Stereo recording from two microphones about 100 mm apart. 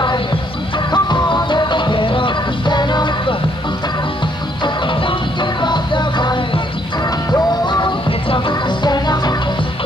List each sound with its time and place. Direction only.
0.9 s music: 50° left (ahead or behind)
5.0 s music: 50° left (ahead or behind)